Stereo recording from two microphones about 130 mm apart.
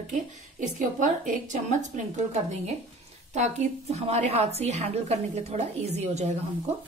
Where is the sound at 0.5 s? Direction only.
75° right (ahead or behind); by 6.3 s 55° right (ahead or behind).